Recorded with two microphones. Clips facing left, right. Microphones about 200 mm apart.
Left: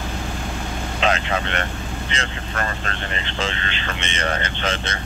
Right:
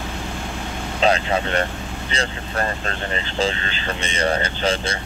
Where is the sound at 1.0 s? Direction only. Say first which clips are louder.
Right 3 dB; 35° right (ahead or behind).